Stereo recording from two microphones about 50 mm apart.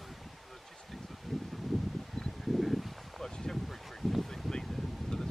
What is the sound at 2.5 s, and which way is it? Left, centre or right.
Wind, centre.